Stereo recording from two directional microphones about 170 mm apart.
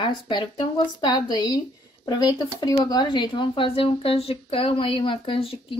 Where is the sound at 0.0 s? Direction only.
25° left (ahead or behind).